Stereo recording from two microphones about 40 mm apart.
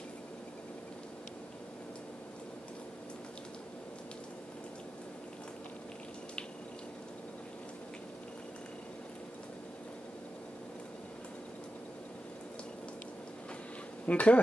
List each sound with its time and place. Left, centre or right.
14.0 s speech: left